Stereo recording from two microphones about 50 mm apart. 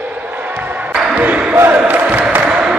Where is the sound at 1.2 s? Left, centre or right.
Right.